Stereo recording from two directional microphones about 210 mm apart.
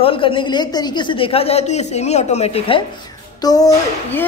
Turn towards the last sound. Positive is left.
turn(degrees=15)  # may be behind; listen again after turning